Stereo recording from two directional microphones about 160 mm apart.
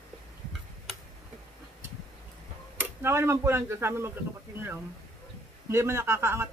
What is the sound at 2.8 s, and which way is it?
Speech, 15° right (ahead or behind).